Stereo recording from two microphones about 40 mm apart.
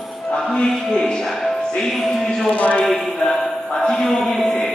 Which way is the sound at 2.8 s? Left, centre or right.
Centre.